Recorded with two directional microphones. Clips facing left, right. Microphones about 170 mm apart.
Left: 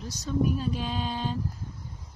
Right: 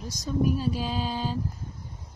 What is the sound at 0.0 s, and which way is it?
Speech, 10° right (ahead or behind).